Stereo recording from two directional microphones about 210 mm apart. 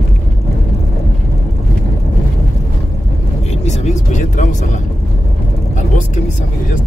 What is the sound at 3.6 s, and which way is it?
Vehicle, 35° left (ahead or behind).